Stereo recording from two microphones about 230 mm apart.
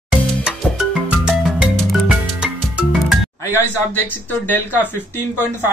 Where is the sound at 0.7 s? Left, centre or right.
Centre.